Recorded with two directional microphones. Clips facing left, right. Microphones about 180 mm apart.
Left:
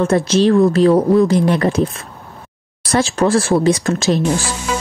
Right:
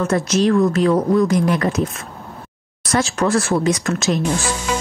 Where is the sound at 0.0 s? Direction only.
30° left (ahead or behind).